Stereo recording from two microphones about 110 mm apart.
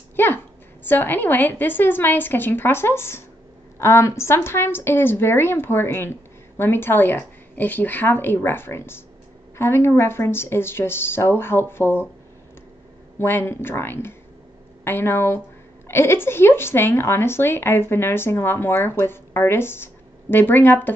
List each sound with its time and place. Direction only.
0.1 s a sound: 20° left (ahead or behind)
0.8 s a woman's voice: 20° left (ahead or behind)
13.2 s a woman's voice: 20° left (ahead or behind)